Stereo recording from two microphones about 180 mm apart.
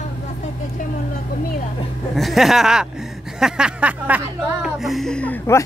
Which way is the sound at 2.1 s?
Centre (ahead or behind).